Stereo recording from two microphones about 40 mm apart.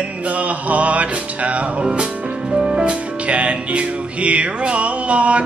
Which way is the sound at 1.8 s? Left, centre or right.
Right.